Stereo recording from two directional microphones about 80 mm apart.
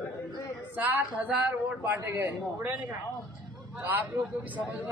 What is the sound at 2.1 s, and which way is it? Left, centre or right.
Speech, right.